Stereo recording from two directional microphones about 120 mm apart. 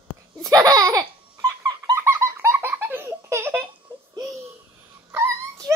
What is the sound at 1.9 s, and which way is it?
Baby laughter, 20° right (ahead or behind).